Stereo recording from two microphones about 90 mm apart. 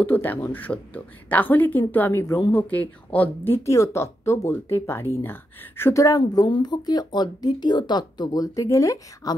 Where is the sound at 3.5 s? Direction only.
35° left (ahead or behind).